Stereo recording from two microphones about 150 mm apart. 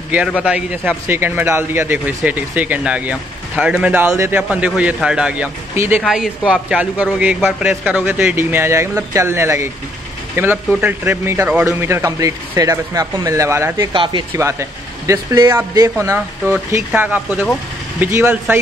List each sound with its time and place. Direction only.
0.4 s a man's voice: 5° right (ahead or behind)
13.9 s speech: 35° right (ahead or behind)
14.3 s a man's voice: 20° right (ahead or behind)